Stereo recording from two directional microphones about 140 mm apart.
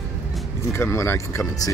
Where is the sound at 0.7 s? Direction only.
20° left (ahead or behind).